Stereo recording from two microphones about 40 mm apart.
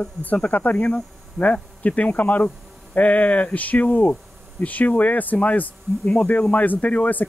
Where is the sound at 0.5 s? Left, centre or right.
Left.